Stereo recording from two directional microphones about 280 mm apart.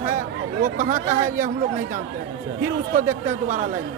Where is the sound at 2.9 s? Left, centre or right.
Right.